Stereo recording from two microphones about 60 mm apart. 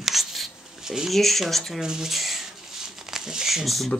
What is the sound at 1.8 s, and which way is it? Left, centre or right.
Speech, centre.